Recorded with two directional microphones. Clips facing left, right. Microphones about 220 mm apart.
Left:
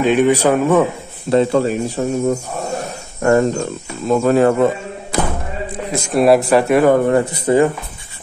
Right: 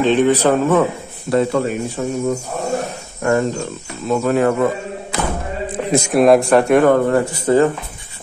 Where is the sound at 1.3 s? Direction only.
30° left (ahead or behind).